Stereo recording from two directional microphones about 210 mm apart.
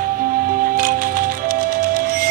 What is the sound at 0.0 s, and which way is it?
Music, 45° right (ahead or behind).